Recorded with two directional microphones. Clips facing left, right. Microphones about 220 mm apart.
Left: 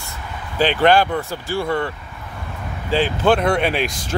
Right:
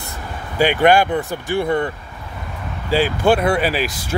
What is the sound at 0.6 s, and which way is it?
Speech, 15° right (ahead or behind).